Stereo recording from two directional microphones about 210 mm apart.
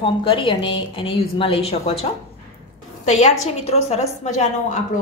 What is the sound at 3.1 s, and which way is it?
A woman's voice, 35° left (ahead or behind).